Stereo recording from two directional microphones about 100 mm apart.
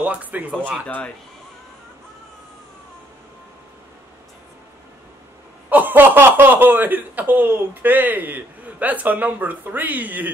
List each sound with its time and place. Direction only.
0.0 s speech: 15° right (ahead or behind)
0.8 s speech: 10° left (ahead or behind)
5.7 s speech: 15° right (ahead or behind)